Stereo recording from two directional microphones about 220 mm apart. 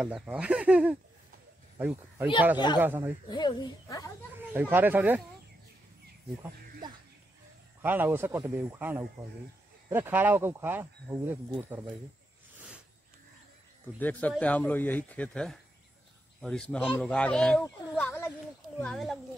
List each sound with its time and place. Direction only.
0.0 s speech: 5° right (ahead or behind)
3.3 s speech: 20° left (ahead or behind)
4.6 s speech: 10° right (ahead or behind)
7.8 s speech: 10° right (ahead or behind)
13.9 s speech: 5° left (ahead or behind)